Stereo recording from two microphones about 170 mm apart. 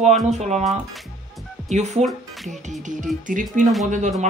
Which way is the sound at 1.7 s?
40° right (ahead or behind).